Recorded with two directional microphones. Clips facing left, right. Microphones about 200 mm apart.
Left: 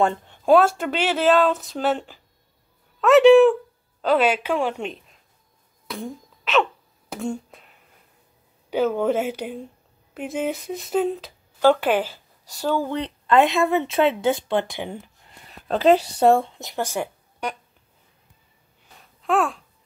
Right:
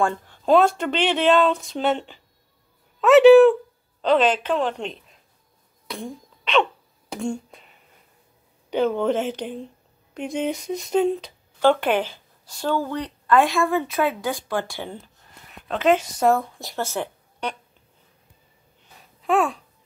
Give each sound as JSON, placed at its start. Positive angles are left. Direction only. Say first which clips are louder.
{"t": 0.0, "sound": "speech", "louder": "left 2 dB", "side_deg": 20}
{"t": 0.5, "sound": "a woman's voice", "louder": "left 1 dB", "side_deg": 5}
{"t": 5.9, "sound": "hiccup", "louder": "left 1 dB", "side_deg": 0}
{"t": 8.6, "sound": "speech", "louder": "even", "side_deg": 5}
{"t": 15.7, "sound": "speech", "louder": "left 3 dB", "side_deg": 35}
{"t": 19.2, "sound": "speech", "louder": "right 1 dB", "side_deg": 0}